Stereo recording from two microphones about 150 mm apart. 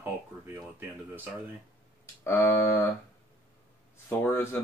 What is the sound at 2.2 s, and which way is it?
Speech, 15° left (ahead or behind).